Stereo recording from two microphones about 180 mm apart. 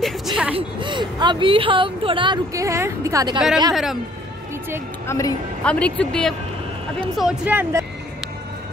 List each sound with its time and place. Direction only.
0.0 s a sound: 5° right (ahead or behind)
0.6 s speech: 25° right (ahead or behind)
3.7 s speech: centre (ahead or behind)
5.0 s a woman's voice: 15° left (ahead or behind)
7.2 s speech: 5° right (ahead or behind)